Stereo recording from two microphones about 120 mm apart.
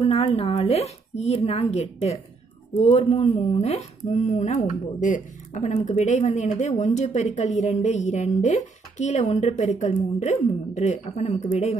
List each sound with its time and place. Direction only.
0.0 s speech: 55° left (ahead or behind); by 11.7 s 80° left